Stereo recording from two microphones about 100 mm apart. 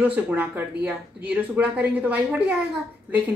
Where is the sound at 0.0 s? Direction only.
15° right (ahead or behind).